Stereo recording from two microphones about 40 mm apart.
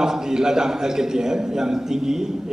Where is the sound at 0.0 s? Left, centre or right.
Centre.